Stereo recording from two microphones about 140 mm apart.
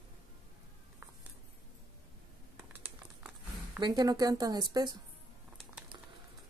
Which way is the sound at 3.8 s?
30° right (ahead or behind).